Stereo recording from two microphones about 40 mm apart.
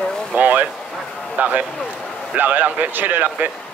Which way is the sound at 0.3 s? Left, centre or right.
Right.